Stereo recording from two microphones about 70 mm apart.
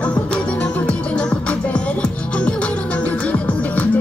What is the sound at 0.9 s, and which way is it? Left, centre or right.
Music, centre.